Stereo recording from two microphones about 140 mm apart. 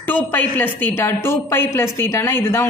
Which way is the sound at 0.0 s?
15° left (ahead or behind).